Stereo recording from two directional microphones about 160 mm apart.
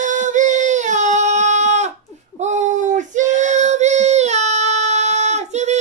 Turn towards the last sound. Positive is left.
turn(degrees=-45)  # may be behind; listen again after turning